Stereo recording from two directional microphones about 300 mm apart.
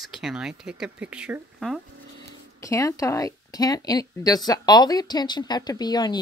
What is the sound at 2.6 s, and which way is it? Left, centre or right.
A woman's voice, centre.